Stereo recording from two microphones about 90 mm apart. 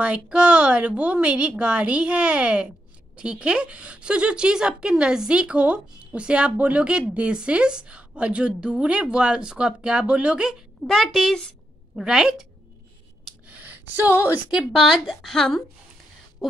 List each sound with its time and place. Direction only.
0.0 s a woman's voice: 10° right (ahead or behind)
10.9 s a woman's voice: 5° left (ahead or behind)
11.9 s a woman's voice: 5° right (ahead or behind)
13.5 s a sound: 20° right (ahead or behind)
14.5 s a woman's voice: 5° right (ahead or behind)